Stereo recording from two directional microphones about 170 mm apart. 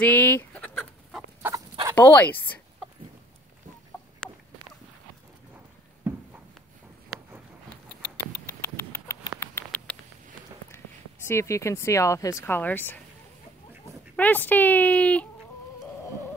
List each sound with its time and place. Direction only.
0.0 s speech: 10° left (ahead or behind)
1.4 s fowl: 15° right (ahead or behind)
2.0 s speech: 10° left (ahead or behind)
4.2 s a sound: 5° left (ahead or behind)
6.0 s a sound: 15° right (ahead or behind)
8.3 s patter: 15° left (ahead or behind)
11.2 s speech: 15° left (ahead or behind)
14.1 s speech: 10° left (ahead or behind)